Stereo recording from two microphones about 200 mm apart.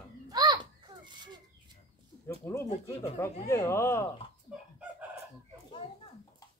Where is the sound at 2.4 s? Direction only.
10° left (ahead or behind).